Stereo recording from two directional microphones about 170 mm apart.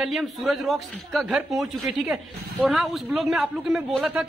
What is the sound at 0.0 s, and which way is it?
A man's voice, centre (ahead or behind).